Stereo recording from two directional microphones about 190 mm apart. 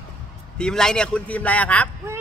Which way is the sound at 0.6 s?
5° left (ahead or behind).